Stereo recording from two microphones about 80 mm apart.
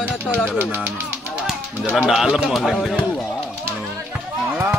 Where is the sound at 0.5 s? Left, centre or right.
Right.